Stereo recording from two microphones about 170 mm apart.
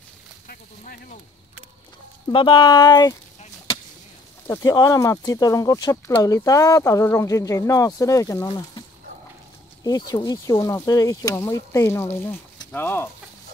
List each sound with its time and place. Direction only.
0.5 s a sound: 55° left (ahead or behind)
2.2 s speech: 30° left (ahead or behind)
3.3 s chop: 30° left (ahead or behind)
4.5 s speech: 20° left (ahead or behind)
9.8 s speech: 20° left (ahead or behind)